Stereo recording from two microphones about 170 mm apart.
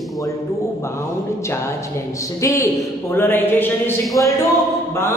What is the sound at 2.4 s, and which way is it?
A man's voice, 20° left (ahead or behind).